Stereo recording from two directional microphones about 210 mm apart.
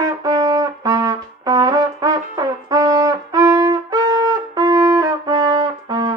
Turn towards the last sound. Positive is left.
turn(degrees=-15)  # may be behind; listen again after turning